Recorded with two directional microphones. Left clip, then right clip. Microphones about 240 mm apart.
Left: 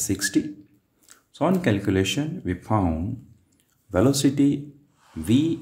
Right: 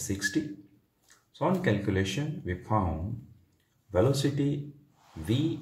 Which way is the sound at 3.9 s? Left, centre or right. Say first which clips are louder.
Left 6 dB; left.